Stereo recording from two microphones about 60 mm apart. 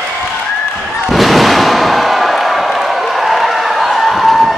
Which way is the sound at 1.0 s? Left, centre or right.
Centre.